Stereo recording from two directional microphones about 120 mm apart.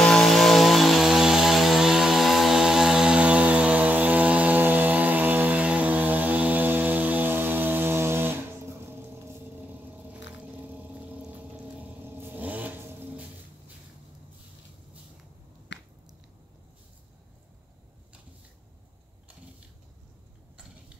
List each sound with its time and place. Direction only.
0.0 s chainsaw: 5° left (ahead or behind); by 13.3 s 15° right (ahead or behind)